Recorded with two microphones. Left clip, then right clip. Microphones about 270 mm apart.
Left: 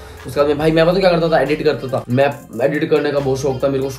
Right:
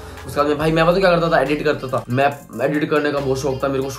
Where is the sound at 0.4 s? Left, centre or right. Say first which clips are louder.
Left 3 dB; centre.